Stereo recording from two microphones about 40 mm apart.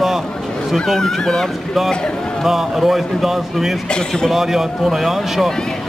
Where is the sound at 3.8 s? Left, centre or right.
Centre.